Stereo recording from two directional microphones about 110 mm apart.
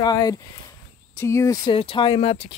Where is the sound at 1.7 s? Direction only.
55° left (ahead or behind).